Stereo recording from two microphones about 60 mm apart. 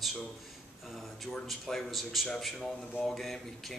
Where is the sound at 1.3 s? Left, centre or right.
Centre.